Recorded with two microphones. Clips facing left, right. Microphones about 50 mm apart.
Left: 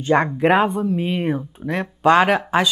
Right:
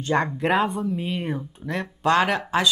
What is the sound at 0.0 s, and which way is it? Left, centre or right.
Speech, centre.